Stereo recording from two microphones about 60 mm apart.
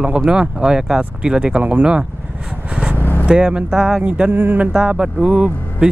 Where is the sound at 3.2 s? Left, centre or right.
Centre.